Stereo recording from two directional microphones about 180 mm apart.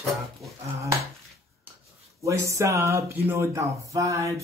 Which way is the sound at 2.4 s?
15° right (ahead or behind).